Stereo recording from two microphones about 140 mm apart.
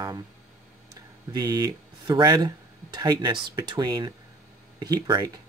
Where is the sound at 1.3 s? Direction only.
30° right (ahead or behind).